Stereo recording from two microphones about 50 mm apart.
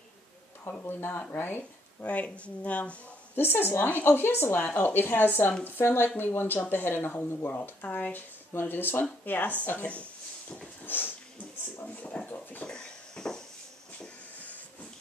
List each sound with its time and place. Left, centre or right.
0.7 s a woman's voice: left
2.0 s speech: left
3.3 s a woman's voice: left
11.8 s dog: left
12.6 s a sound: centre